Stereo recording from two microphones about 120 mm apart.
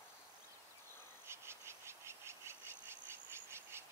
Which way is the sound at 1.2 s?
20° right (ahead or behind).